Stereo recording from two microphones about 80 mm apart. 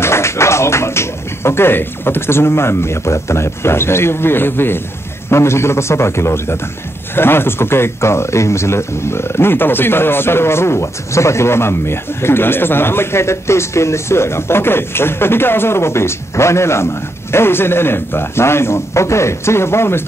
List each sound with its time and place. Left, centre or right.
0.0 s speech: left